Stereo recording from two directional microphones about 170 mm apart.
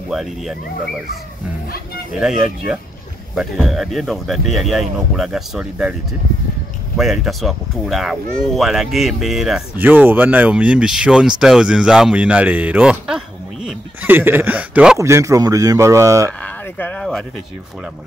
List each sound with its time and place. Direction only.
0.1 s speech: centre (ahead or behind)
2.1 s speech: centre (ahead or behind)
7.0 s speech: centre (ahead or behind); by 16.3 s 20° right (ahead or behind)
16.3 s a sound: 10° left (ahead or behind)